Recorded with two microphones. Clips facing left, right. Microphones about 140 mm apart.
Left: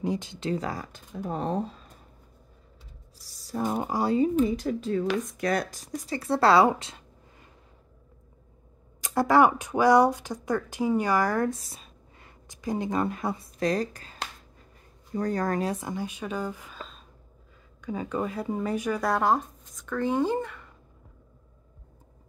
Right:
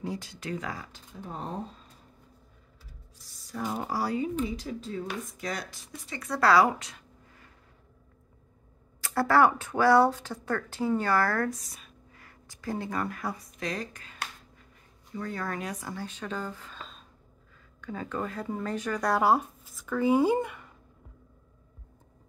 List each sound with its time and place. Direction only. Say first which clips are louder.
0.0 s speech: left 6 dB; 20° left (ahead or behind)
0.9 s speech: left 8 dB; 55° left (ahead or behind)
3.2 s a sound: left 6 dB; 35° left (ahead or behind)
3.6 s speech: left 4 dB; 20° left (ahead or behind)
4.2 s speech: left 7 dB; 45° left (ahead or behind); by 7.4 s 25° left (ahead or behind)
9.0 s speech: left 2 dB; 15° left (ahead or behind)
11.5 s speech: left 2 dB; 30° left (ahead or behind)
13.6 s speech: left 8 dB; 35° left (ahead or behind)
15.1 s speech: left 7 dB; 40° left (ahead or behind)
15.7 s speech: left 5 dB; 20° left (ahead or behind); by 20.6 s 10° right (ahead or behind)